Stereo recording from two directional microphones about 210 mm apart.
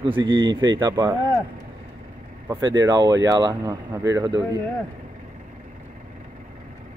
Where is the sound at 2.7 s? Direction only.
20° right (ahead or behind).